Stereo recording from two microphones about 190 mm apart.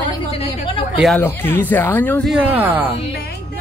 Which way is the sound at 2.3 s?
10° right (ahead or behind).